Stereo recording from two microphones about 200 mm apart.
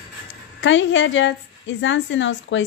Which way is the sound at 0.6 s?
70° left (ahead or behind).